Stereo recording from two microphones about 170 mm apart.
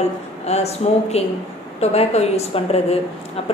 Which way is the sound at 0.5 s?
40° left (ahead or behind).